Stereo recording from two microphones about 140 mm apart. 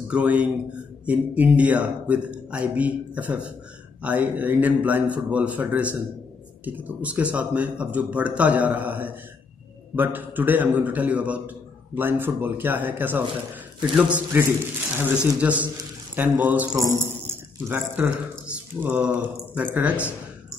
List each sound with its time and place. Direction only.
0.1 s a man's voice: 10° right (ahead or behind)
16.7 s a man's voice: 20° right (ahead or behind)